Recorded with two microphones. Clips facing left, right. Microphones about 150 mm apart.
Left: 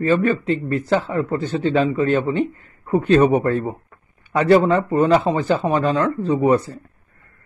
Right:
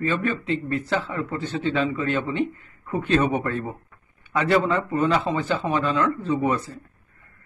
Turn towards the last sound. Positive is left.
turn(degrees=40)  # may be behind; listen again after turning